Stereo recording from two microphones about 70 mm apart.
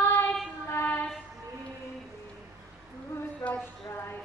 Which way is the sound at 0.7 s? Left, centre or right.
Left.